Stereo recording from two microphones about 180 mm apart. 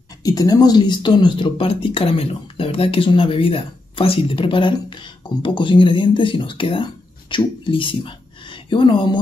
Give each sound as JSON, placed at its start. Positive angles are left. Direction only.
{"t": 0.2, "sound": "speech", "side_deg": 20}